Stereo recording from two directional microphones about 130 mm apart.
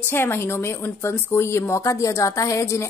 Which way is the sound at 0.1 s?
20° left (ahead or behind).